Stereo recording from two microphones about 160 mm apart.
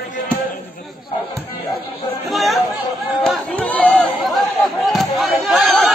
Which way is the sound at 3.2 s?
5° left (ahead or behind).